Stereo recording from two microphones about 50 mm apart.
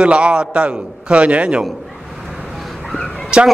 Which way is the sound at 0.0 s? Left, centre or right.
Right.